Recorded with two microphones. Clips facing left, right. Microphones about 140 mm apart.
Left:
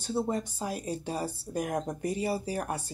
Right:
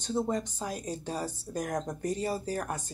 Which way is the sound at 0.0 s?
5° left (ahead or behind).